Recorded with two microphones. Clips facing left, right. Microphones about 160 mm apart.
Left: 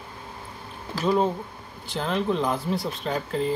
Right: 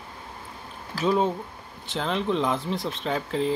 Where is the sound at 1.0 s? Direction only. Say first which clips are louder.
Even; centre (ahead or behind).